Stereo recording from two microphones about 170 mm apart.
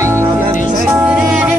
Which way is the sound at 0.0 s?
15° right (ahead or behind).